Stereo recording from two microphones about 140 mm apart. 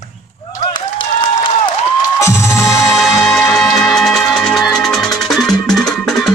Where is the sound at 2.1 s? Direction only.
20° left (ahead or behind).